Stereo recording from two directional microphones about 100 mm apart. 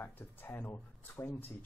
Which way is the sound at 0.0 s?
20° left (ahead or behind).